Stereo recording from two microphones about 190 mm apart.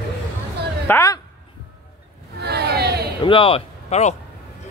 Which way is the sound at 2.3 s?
60° right (ahead or behind).